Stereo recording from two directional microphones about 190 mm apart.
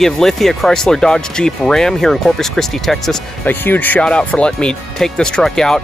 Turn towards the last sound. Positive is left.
turn(degrees=0)  # may be behind; listen again after turning